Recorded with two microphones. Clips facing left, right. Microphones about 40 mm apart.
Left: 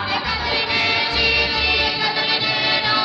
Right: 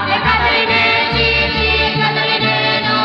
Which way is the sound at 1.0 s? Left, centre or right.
Centre.